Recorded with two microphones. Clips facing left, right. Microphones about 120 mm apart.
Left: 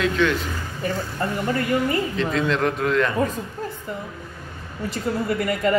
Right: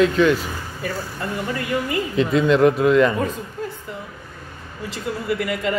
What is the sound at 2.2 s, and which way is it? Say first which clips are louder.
A man's voice: right 6 dB; 5° right (ahead or behind).